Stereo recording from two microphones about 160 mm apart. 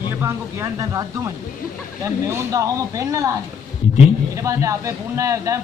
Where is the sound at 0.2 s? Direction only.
20° right (ahead or behind).